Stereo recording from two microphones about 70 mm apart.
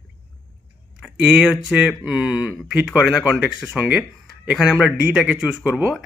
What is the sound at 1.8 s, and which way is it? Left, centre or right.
Speech, centre.